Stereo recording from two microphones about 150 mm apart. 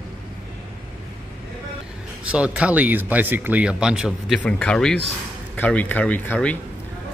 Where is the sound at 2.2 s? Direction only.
10° right (ahead or behind).